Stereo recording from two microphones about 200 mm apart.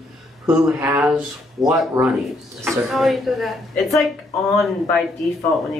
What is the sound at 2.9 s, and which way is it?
Speech, centre (ahead or behind).